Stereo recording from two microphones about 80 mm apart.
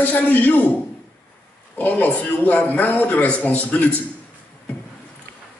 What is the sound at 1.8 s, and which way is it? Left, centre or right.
A man's voice, centre.